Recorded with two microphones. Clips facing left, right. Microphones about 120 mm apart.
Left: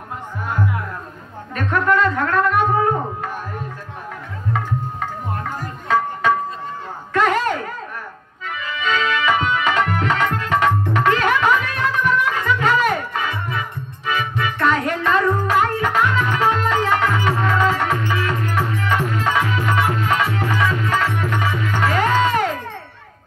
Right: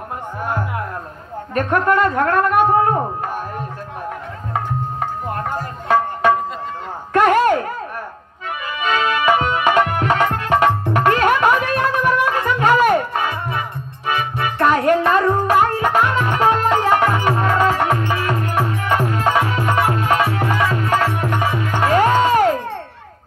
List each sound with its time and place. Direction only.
1.5 s speech: 45° right (ahead or behind)
5.4 s music: 45° right (ahead or behind)
7.2 s a sound: 50° right (ahead or behind)
8.7 s music: 45° right (ahead or behind)